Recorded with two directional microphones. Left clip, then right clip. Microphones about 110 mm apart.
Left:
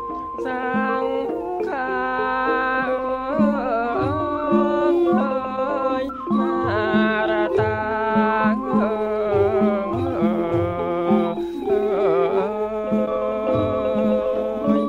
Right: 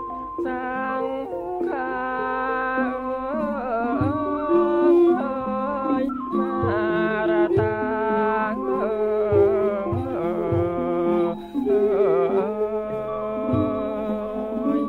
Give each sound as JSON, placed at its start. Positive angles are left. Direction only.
{"t": 4.5, "sound": "music", "side_deg": 50}
{"t": 6.9, "sound": "music", "side_deg": 40}
{"t": 11.7, "sound": "music", "side_deg": 40}
{"t": 13.5, "sound": "music", "side_deg": 45}